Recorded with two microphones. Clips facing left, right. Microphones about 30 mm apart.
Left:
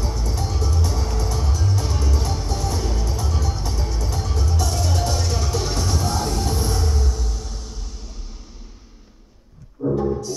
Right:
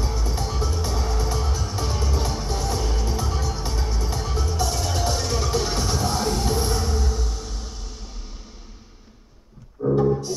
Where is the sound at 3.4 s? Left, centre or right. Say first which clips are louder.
Left 1 dB; centre.